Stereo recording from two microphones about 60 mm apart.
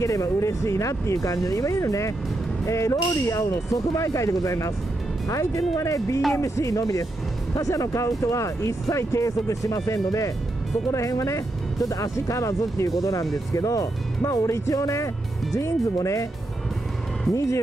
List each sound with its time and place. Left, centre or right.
0.0 s speech: left
17.3 s speech: centre